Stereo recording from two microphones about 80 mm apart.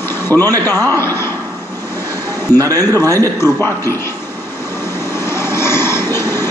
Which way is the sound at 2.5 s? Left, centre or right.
Right.